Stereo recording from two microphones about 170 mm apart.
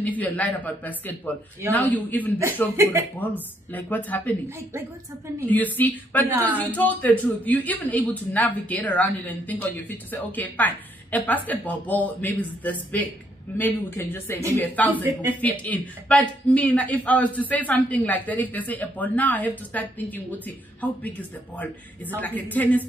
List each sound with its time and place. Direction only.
0.2 s speech: 10° left (ahead or behind)
2.7 s a woman's voice: 15° right (ahead or behind)
3.2 s speech: 10° left (ahead or behind)
4.5 s a woman's voice: 15° right (ahead or behind)
5.4 s speech: 10° left (ahead or behind)
6.2 s a woman's voice: 10° right (ahead or behind)
6.6 s speech: 10° left (ahead or behind)
22.2 s speech: 10° left (ahead or behind)